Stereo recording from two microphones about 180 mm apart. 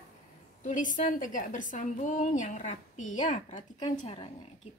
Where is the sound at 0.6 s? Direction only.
45° left (ahead or behind).